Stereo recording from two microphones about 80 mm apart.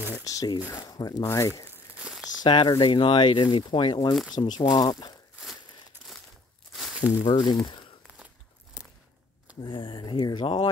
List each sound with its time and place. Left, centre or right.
0.1 s speech: left
1.2 s speech: left
1.7 s crumpling: centre
2.4 s speech: left
2.8 s speech: left
4.1 s speech: centre
4.4 s speech: left
5.9 s crumpling: right
7.2 s speech: left
9.6 s speech: left